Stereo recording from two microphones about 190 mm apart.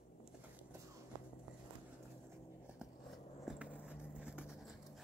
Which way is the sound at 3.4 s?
5° right (ahead or behind).